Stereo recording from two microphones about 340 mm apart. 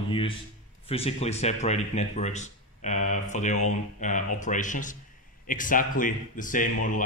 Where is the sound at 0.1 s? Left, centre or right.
Centre.